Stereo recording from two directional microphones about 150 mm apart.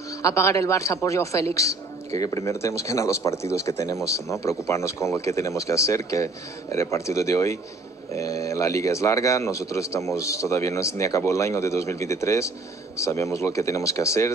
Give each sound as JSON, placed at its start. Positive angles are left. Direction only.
{"t": 0.2, "sound": "a man's voice", "side_deg": 20}